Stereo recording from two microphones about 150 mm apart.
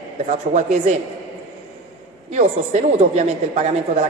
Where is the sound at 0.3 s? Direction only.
50° right (ahead or behind).